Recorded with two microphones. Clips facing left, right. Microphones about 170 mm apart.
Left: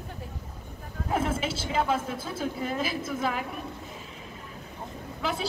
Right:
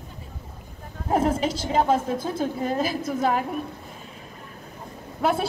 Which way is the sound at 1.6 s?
40° right (ahead or behind).